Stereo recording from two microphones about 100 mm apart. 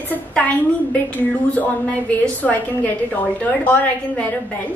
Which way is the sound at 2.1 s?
15° left (ahead or behind).